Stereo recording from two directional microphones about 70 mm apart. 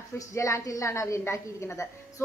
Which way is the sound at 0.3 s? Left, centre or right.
Left.